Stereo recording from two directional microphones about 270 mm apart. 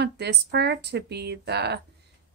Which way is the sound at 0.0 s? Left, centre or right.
Right.